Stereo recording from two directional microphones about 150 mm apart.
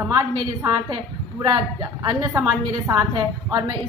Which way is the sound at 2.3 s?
20° right (ahead or behind).